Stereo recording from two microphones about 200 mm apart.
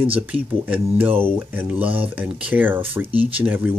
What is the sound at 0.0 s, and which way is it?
Speech, 10° right (ahead or behind).